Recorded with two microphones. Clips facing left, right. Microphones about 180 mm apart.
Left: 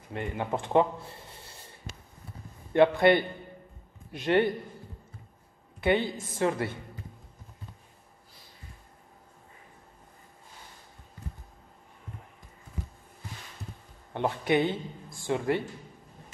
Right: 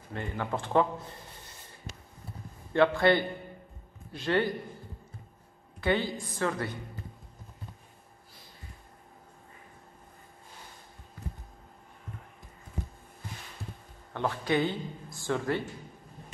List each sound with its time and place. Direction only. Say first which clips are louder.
0.1 s speech: left 2 dB; 20° left (ahead or behind)
2.7 s speech: left 3 dB; 20° left (ahead or behind)
5.8 s a woman's voice: left 2 dB; 20° left (ahead or behind)
14.1 s speech: left 3 dB; 20° left (ahead or behind)